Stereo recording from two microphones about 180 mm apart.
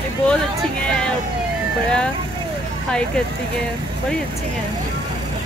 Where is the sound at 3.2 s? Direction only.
5° left (ahead or behind).